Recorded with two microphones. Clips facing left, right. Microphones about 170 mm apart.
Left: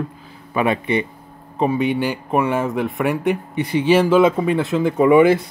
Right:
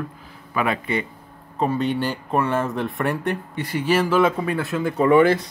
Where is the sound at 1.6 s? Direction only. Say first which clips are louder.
Left 3 dB; 10° left (ahead or behind).